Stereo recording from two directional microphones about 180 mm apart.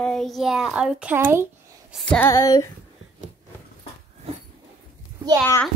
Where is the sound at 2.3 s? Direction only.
20° left (ahead or behind).